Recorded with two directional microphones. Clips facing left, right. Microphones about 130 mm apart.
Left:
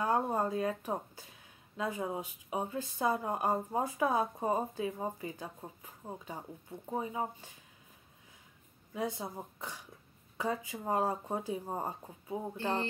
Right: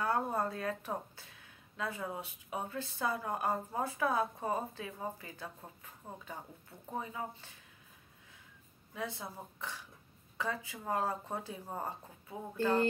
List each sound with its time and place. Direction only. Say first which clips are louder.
0.0 s speech: left 2 dB; 15° left (ahead or behind)
8.9 s speech: left 5 dB; 20° left (ahead or behind)